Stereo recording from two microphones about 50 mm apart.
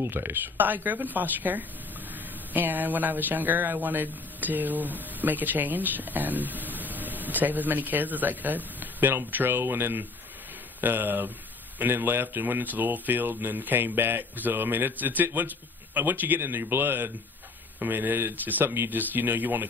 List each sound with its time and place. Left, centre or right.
0.0 s speech: right
10.8 s a man's voice: right
16.3 s speech: right